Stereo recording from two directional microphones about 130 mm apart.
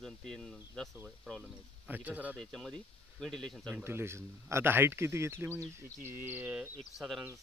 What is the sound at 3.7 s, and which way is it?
Speech, 20° right (ahead or behind).